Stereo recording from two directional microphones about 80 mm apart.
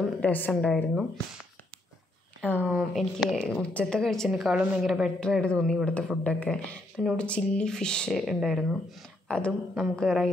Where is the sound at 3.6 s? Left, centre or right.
Centre.